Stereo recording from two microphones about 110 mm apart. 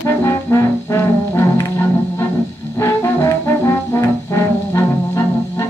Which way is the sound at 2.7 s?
25° left (ahead or behind).